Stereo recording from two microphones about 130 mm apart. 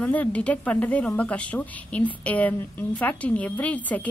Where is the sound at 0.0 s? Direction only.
10° left (ahead or behind).